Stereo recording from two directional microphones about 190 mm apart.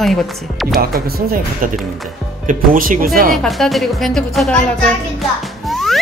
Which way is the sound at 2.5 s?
45° right (ahead or behind).